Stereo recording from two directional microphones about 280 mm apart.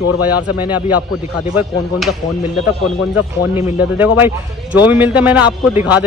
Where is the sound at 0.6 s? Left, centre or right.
Centre.